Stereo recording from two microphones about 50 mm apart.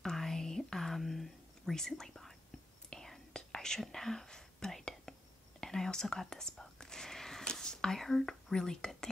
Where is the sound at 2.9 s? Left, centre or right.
Centre.